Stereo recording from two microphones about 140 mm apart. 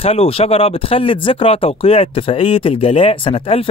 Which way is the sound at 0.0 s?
45° left (ahead or behind).